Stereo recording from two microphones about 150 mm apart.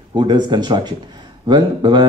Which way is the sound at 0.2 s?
30° right (ahead or behind).